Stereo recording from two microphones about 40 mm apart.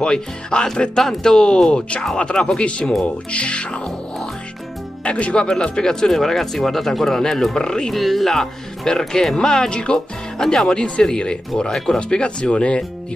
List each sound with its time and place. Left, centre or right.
0.0 s speech: centre
7.9 s speech: centre
12.0 s speech: left